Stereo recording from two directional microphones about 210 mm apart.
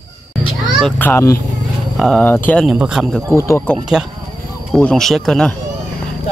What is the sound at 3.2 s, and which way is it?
Speech, 15° left (ahead or behind).